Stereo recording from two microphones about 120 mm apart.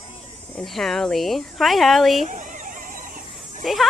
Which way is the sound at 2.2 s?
90° right.